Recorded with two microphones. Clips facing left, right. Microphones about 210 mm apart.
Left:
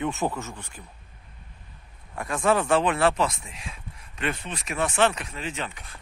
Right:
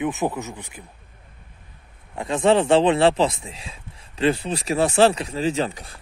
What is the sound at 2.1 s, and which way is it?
Speech, 25° right (ahead or behind).